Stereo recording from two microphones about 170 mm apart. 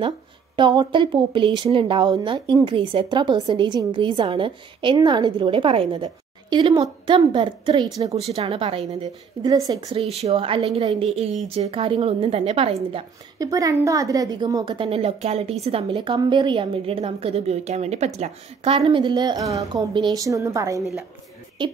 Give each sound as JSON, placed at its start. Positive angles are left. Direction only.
{"t": 0.6, "sound": "a woman's voice", "side_deg": -25}
{"t": 9.5, "sound": "speech", "side_deg": -20}
{"t": 10.0, "sound": "a woman's voice", "side_deg": -35}
{"t": 13.4, "sound": "speech", "side_deg": -20}